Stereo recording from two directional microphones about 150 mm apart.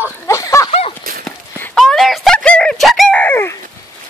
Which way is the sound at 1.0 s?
75° right (ahead or behind).